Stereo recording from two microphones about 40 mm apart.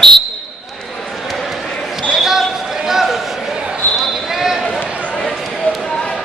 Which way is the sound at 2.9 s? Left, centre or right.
Centre.